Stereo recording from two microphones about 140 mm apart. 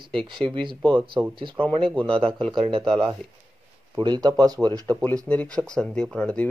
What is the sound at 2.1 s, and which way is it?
Speech, 40° right (ahead or behind).